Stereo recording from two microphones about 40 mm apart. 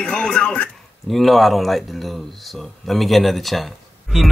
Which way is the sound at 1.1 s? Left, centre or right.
Centre.